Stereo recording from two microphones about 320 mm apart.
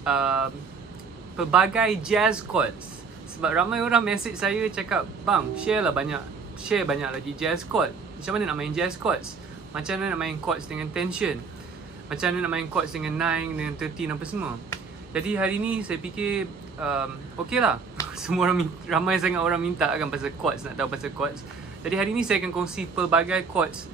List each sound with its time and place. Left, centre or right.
0.0 s speech: centre